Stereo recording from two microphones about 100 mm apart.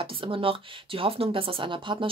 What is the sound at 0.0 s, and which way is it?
Speech, 60° right (ahead or behind).